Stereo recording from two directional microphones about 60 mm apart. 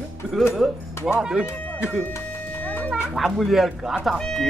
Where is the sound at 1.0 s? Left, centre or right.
Left.